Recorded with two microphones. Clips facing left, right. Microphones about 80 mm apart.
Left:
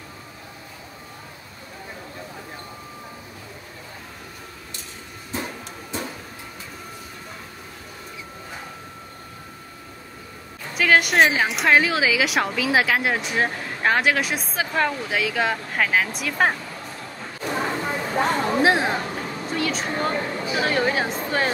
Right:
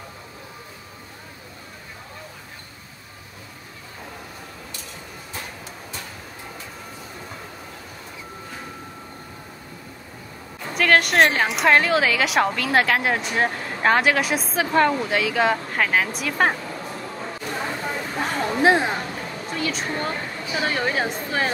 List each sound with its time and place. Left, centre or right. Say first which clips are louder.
5.3 s vehicle: left 6 dB; left
10.7 s a woman's voice: even; centre
17.6 s a sound: left 3 dB; centre
18.2 s a woman's voice: even; centre